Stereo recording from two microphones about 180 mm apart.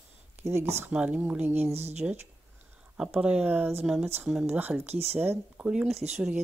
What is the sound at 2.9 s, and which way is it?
Speech, 5° right (ahead or behind).